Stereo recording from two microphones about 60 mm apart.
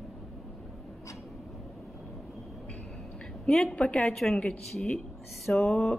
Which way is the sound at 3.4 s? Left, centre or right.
Centre.